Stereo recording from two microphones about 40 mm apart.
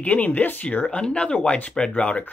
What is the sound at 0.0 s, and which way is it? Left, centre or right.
Speech, left.